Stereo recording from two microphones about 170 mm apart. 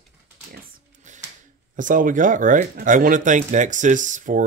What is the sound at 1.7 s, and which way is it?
Speech, 50° right (ahead or behind).